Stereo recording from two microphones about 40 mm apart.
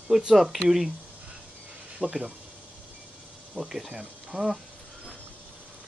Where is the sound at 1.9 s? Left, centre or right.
Right.